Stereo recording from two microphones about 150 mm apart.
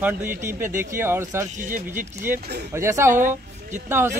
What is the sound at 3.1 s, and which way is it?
Speech, 60° right (ahead or behind).